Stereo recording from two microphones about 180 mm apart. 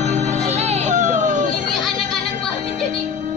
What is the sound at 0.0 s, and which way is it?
Music, 40° right (ahead or behind).